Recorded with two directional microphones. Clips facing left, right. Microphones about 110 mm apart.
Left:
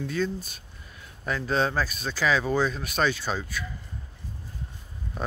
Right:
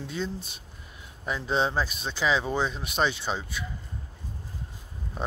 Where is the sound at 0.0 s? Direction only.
20° right (ahead or behind).